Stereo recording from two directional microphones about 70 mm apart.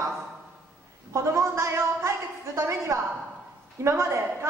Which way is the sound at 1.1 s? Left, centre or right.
Right.